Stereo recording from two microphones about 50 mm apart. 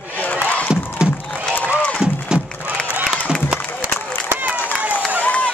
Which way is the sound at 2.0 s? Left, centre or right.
Centre.